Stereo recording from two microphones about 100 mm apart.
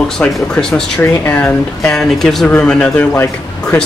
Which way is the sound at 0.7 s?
20° left (ahead or behind).